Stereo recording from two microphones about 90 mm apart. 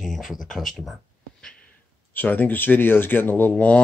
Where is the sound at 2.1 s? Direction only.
20° left (ahead or behind).